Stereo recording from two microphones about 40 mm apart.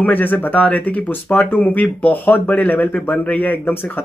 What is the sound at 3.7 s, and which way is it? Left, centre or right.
Speech, left.